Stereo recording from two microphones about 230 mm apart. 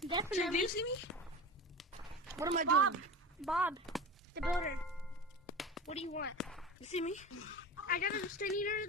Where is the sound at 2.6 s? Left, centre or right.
Right.